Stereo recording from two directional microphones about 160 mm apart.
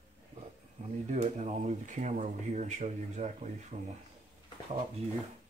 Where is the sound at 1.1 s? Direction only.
45° right (ahead or behind).